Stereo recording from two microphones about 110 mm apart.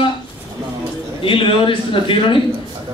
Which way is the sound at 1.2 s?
50° left (ahead or behind).